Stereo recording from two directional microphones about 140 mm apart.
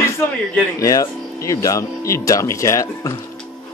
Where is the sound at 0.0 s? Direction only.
15° left (ahead or behind).